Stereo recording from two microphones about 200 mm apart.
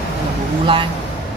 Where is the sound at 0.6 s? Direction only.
25° right (ahead or behind).